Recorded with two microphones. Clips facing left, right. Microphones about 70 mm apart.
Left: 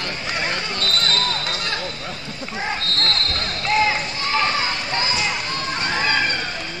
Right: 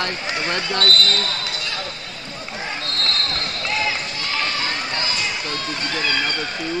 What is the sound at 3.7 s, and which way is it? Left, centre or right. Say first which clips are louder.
Basketball bounce: left 6 dB; left.